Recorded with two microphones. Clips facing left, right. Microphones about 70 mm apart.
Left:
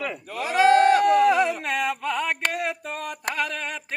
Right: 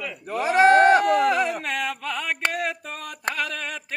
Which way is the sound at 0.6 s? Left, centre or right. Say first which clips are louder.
Right 1 dB; right.